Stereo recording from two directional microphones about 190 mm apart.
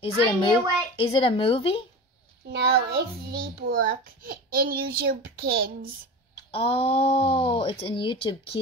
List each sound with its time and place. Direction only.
0.0 s speech: 25° left (ahead or behind)
2.5 s a child's voice: 55° right (ahead or behind)
6.5 s speech: 30° left (ahead or behind)